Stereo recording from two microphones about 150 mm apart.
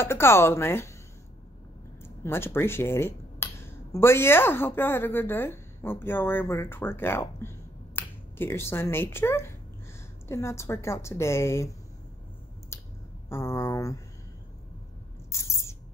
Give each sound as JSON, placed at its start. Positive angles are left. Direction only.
{"t": 0.0, "sound": "speech", "side_deg": 15}
{"t": 2.0, "sound": "a woman's voice", "side_deg": 15}
{"t": 12.7, "sound": "a sound", "side_deg": 20}
{"t": 13.3, "sound": "a woman's voice", "side_deg": 20}
{"t": 15.3, "sound": "owl", "side_deg": 20}